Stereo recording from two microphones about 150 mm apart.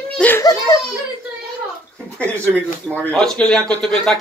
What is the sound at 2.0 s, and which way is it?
Speech, 10° left (ahead or behind).